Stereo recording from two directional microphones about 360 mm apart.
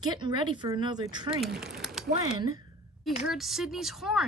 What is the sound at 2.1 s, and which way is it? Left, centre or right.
Speech, centre.